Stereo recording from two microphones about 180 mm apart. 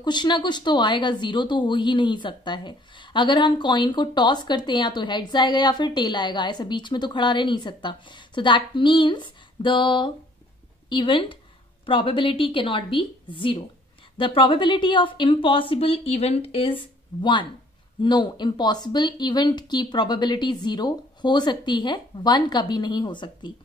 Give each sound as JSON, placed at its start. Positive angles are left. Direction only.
{"t": 0.0, "sound": "speech", "side_deg": 25}